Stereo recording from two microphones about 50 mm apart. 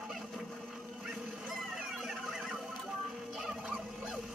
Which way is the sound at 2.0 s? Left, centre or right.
Centre.